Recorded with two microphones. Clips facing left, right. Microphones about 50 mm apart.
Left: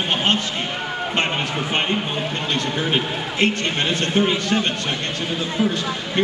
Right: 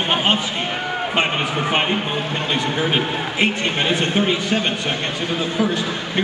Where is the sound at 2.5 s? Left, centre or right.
Centre.